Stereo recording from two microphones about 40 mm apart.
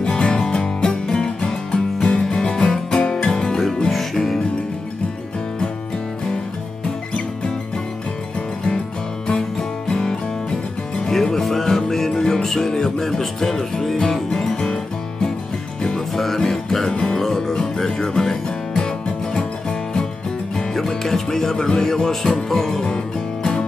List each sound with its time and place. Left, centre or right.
0.0 s music: left; by 4.4 s centre
9.3 s music: centre
15.9 s music: centre
20.5 s music: centre